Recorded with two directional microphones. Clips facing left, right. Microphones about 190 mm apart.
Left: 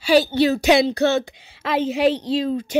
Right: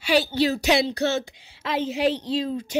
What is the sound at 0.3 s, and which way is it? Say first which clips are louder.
Speech: left 5 dB; 60° left (ahead or behind).